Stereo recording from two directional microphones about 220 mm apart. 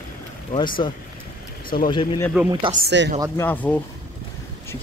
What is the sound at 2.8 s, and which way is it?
Speech, 55° right (ahead or behind).